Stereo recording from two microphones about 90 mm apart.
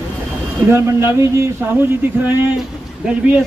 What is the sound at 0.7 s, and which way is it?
Speech, 30° right (ahead or behind).